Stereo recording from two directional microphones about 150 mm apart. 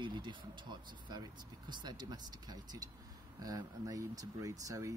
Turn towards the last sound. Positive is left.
turn(degrees=-20)  # may be behind; listen again after turning